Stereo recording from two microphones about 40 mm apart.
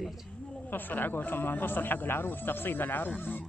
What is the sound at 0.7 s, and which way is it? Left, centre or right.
Speech, left.